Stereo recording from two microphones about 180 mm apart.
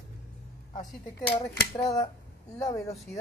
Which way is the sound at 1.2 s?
20° left (ahead or behind).